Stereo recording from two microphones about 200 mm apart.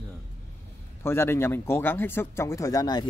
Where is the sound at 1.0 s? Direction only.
10° left (ahead or behind).